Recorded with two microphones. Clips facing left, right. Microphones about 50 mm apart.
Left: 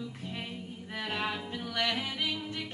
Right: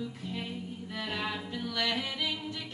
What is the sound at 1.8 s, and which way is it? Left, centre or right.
Music, left.